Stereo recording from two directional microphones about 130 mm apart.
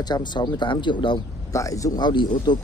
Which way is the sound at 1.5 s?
25° left (ahead or behind).